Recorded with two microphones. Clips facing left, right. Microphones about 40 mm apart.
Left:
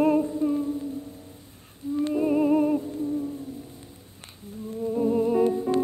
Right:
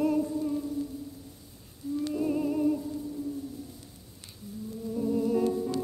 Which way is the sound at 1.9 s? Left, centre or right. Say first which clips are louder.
Left 6 dB; left.